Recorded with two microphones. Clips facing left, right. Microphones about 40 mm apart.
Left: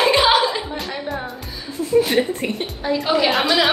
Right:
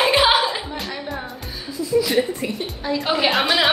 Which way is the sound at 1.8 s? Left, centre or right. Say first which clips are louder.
Left 3 dB; left.